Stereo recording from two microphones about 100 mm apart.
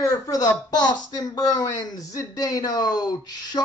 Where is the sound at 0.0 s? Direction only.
35° left (ahead or behind).